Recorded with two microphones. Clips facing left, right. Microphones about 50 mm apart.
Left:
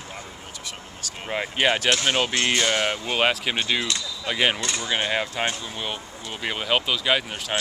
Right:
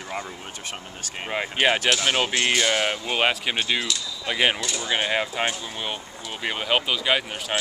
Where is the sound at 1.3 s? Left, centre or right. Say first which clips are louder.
Right 1 dB; centre.